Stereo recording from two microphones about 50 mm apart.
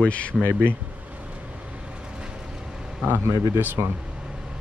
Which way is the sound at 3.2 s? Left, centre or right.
Right.